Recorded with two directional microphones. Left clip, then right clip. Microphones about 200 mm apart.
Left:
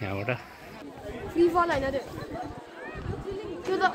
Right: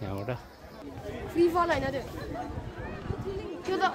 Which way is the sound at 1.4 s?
40° right (ahead or behind).